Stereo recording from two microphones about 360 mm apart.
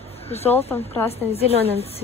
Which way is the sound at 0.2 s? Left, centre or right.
Centre.